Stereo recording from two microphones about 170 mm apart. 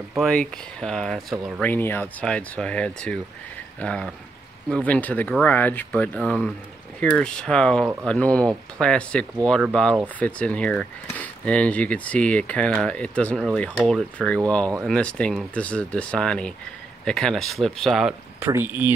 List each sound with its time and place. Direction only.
0.1 s speech: centre (ahead or behind)
1.7 s speech: 10° left (ahead or behind)
18.4 s speech: 15° right (ahead or behind)